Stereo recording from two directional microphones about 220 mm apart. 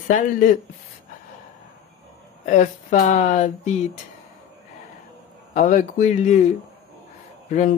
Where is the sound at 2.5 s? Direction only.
35° left (ahead or behind).